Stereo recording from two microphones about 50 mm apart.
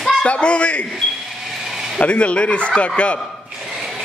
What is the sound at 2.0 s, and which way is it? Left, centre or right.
Speech, left.